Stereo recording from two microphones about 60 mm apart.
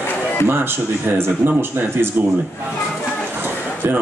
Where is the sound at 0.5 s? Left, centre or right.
Right.